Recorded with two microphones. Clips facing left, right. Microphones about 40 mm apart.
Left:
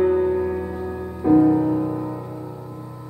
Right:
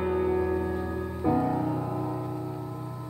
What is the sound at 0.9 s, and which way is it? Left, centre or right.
Music, centre.